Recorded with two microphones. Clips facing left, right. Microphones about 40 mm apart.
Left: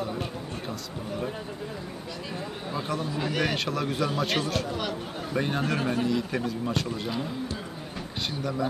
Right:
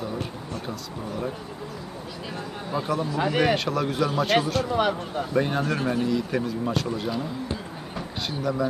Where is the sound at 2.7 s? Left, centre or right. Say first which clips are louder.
Right 5 dB; centre.